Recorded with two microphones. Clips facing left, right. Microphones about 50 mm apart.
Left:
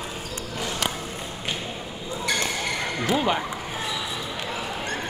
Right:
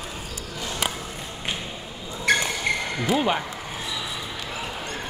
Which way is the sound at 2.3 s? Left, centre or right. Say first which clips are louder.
Right 6 dB; right.